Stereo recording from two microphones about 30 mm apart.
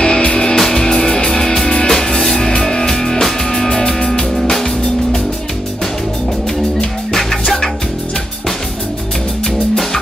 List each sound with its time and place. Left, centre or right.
0.0 s music: left
0.6 s music: centre
1.9 s music: centre
3.6 s music: left
4.4 s music: centre
7.1 s music: centre